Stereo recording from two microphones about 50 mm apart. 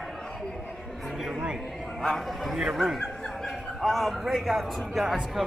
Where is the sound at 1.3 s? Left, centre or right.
Centre.